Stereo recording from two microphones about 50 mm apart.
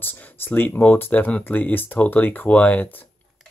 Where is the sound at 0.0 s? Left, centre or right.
Left.